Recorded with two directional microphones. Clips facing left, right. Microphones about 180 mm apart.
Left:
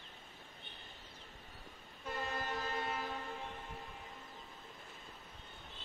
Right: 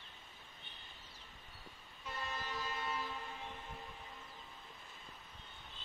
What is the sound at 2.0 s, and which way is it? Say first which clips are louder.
Vehicle: left 4 dB; 50° left (ahead or behind).